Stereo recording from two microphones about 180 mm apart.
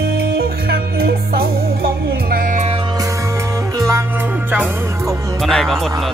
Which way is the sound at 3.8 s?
15° right (ahead or behind).